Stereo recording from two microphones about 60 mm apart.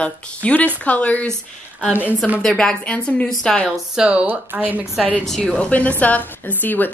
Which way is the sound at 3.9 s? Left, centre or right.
Centre.